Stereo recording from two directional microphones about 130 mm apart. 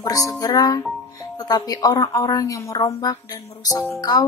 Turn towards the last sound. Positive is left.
turn(degrees=30)  # may be behind; listen again after turning